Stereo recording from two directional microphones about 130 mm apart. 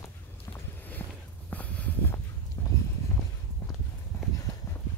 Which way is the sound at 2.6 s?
15° left (ahead or behind).